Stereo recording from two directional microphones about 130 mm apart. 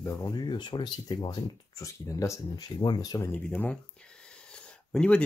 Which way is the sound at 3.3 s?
10° left (ahead or behind).